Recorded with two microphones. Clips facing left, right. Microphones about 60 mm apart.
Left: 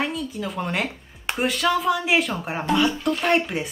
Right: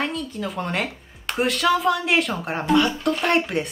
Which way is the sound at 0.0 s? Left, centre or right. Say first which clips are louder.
Even; centre.